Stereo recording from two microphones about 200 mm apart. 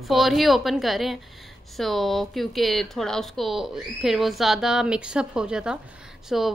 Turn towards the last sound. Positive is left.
turn(degrees=0)  # may be behind; listen again after turning